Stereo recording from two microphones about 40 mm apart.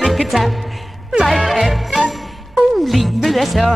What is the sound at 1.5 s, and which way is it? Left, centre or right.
Jingle bell, centre.